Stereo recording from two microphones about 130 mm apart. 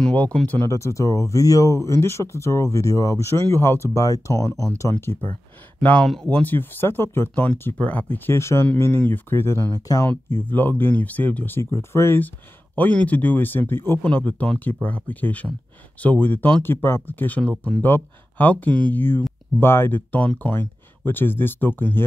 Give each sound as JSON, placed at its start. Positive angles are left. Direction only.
{"t": 0.0, "sound": "speech", "side_deg": 10}
{"t": 0.7, "sound": "speech", "side_deg": 20}
{"t": 5.8, "sound": "speech", "side_deg": 10}